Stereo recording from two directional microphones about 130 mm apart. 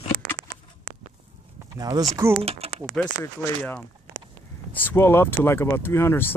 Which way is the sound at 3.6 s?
10° left (ahead or behind).